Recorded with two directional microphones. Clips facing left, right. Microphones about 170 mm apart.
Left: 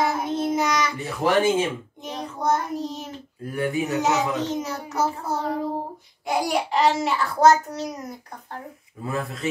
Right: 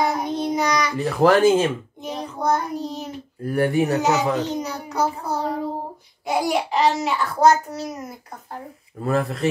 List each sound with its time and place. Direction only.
0.0 s child singing: centre (ahead or behind)
1.0 s speech: 75° right (ahead or behind)
2.0 s child singing: centre (ahead or behind)
2.7 s a child's voice: centre (ahead or behind)
3.5 s speech: 65° right (ahead or behind)
4.0 s a child's voice: centre (ahead or behind)
9.0 s speech: 75° right (ahead or behind)